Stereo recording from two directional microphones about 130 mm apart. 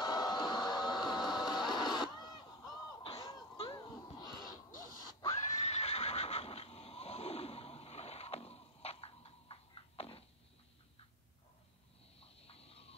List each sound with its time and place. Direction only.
0.0 s a sound: 30° left (ahead or behind)
3.7 s music: 35° left (ahead or behind)
5.3 s neigh: 55° left (ahead or behind)
12.2 s snoring: 50° left (ahead or behind)